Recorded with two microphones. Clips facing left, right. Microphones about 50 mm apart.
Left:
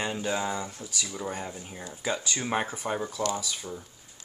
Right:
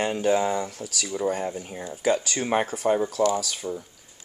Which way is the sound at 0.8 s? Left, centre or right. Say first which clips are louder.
Right 3 dB; right.